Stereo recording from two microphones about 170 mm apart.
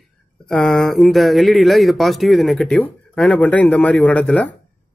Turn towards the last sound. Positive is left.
turn(degrees=10)  # may be behind; listen again after turning